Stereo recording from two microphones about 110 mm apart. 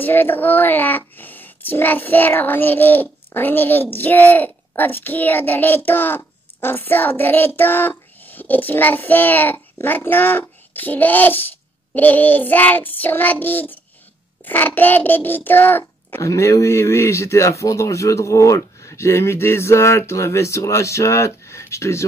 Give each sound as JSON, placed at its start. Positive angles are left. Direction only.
{"t": 0.0, "sound": "speech", "side_deg": 20}